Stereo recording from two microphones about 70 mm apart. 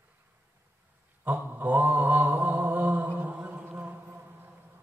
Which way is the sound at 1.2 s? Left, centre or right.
Right.